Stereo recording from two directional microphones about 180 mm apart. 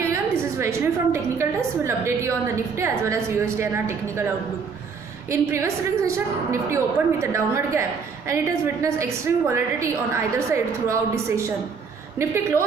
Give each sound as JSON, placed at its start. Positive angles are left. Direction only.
{"t": 0.0, "sound": "a woman's voice", "side_deg": -15}
{"t": 5.3, "sound": "a woman's voice", "side_deg": -15}